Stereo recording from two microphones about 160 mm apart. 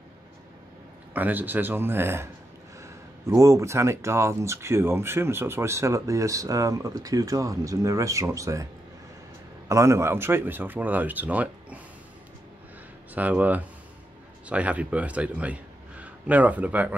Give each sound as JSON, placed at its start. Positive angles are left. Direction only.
{"t": 1.1, "sound": "speech", "side_deg": -10}
{"t": 9.7, "sound": "speech", "side_deg": -20}
{"t": 13.1, "sound": "a man's voice", "side_deg": -10}